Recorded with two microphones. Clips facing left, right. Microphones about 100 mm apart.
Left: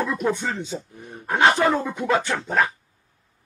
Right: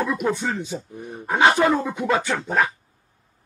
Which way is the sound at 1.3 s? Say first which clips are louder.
Right 1 dB; centre (ahead or behind).